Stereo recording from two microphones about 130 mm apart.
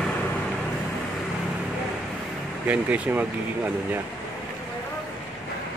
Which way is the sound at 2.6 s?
10° right (ahead or behind).